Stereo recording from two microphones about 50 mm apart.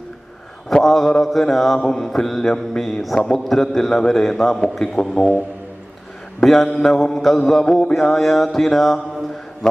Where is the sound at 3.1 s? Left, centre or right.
Centre.